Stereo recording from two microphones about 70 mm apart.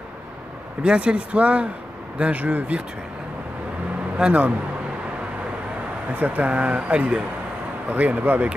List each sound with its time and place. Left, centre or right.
0.8 s speech: centre
4.2 s speech: right
6.1 s speech: right